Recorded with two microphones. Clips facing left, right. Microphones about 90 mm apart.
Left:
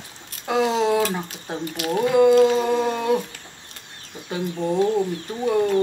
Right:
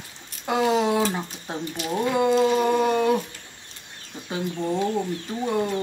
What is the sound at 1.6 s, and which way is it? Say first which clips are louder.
Speech: left 4 dB; 60° left (ahead or behind).